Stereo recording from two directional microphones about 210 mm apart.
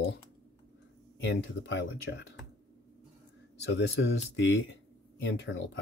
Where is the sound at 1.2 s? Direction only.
55° left (ahead or behind).